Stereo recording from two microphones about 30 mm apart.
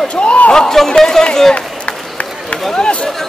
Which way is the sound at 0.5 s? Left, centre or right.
Left.